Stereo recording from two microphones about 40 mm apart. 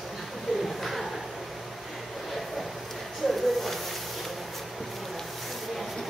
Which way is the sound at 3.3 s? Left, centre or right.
Centre.